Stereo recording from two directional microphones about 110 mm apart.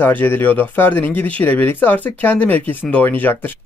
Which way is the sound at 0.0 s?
20° left (ahead or behind).